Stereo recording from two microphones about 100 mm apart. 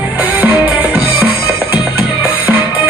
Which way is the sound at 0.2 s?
15° right (ahead or behind).